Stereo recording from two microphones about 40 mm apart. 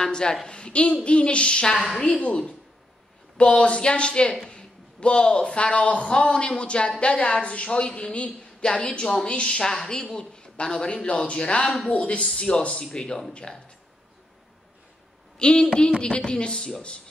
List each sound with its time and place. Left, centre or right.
0.0 s a woman's voice: centre
9.0 s a woman's voice: centre; by 12.3 s left
12.4 s a woman's voice: left
15.3 s a woman's voice: left